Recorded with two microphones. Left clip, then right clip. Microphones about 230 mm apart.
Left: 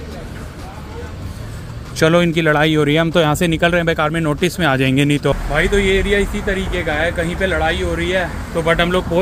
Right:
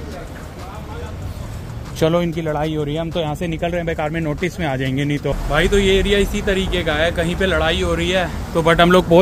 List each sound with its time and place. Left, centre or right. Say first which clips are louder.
2.0 s speech: left 4 dB; centre
5.5 s speech: right 2 dB; centre
8.5 s speech: right 2 dB; right
8.8 s speech: right 5 dB; right